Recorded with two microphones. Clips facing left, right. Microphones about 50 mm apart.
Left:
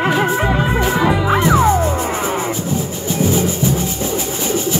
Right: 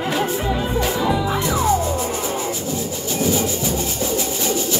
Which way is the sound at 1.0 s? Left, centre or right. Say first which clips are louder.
Left 5 dB; left.